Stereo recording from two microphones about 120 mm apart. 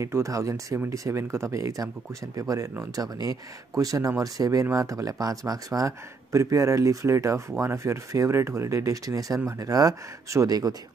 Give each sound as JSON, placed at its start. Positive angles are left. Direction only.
{"t": 0.0, "sound": "speech", "side_deg": -25}